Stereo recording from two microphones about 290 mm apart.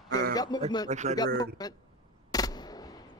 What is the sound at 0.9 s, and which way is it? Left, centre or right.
Speech, right.